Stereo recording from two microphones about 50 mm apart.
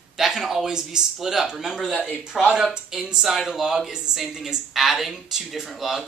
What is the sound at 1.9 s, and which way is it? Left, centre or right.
Speech, left.